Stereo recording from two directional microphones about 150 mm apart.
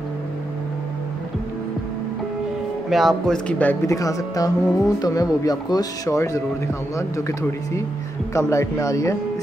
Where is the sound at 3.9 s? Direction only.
25° left (ahead or behind).